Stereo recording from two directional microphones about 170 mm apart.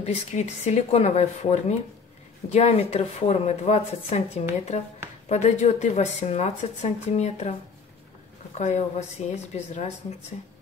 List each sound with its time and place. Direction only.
0.0 s speech: 40° left (ahead or behind)
8.5 s a woman's voice: 45° left (ahead or behind)